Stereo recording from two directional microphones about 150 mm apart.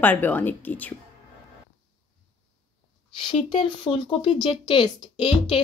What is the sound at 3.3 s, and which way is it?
Speech, 35° left (ahead or behind).